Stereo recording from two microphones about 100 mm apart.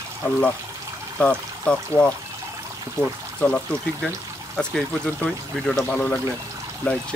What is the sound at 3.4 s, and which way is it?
Speech, 10° left (ahead or behind).